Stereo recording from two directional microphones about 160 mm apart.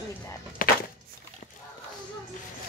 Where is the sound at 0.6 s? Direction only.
60° left (ahead or behind).